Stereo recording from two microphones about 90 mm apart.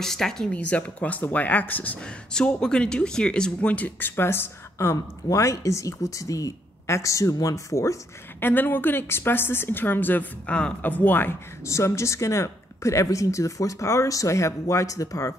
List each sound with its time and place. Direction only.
0.0 s speech: 5° left (ahead or behind); by 8.0 s 35° left (ahead or behind)
8.4 s speech: 25° left (ahead or behind)
11.6 s speech: 35° left (ahead or behind)